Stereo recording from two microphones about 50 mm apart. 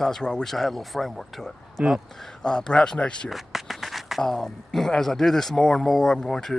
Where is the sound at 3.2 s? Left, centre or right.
Centre.